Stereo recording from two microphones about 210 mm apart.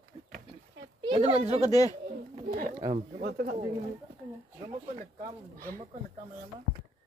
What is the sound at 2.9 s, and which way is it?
Speech, 35° right (ahead or behind).